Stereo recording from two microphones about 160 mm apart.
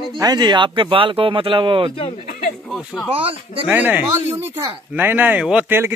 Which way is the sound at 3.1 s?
35° right (ahead or behind).